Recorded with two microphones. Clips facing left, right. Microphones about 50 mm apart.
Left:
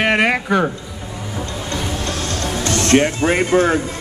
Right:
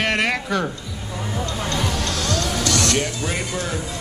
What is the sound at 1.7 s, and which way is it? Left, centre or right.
Music, left.